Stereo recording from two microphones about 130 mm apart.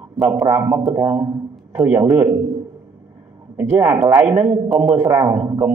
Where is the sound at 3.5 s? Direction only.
20° right (ahead or behind).